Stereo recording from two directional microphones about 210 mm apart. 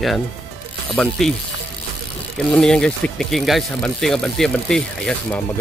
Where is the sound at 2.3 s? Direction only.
Centre (ahead or behind).